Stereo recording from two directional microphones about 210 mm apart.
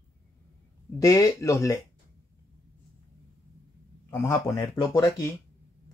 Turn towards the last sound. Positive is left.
turn(degrees=15)  # may be behind; listen again after turning